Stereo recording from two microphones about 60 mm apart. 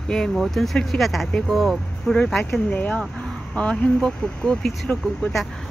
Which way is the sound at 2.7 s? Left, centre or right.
Left.